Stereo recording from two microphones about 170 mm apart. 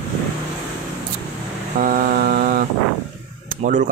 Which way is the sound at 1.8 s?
60° right (ahead or behind).